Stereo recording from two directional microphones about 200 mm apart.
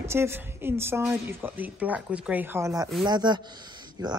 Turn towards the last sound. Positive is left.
turn(degrees=-20)  # may be behind; listen again after turning